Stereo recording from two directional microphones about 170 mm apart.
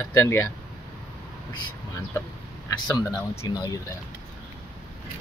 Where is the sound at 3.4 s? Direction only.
20° left (ahead or behind).